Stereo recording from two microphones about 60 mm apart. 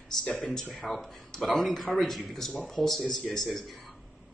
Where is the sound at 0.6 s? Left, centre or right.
Centre.